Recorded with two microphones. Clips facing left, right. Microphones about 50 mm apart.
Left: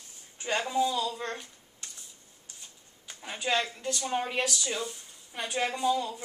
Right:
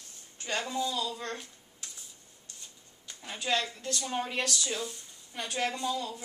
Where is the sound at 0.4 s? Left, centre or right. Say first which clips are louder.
Left 5 dB; centre.